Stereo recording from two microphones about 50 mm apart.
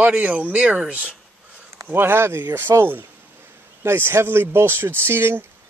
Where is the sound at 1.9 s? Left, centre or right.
Right.